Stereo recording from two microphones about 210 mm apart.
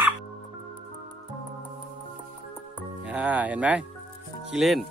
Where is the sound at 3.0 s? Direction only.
5° right (ahead or behind).